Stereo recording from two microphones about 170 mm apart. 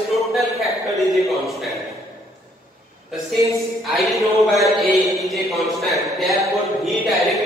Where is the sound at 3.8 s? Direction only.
Centre (ahead or behind).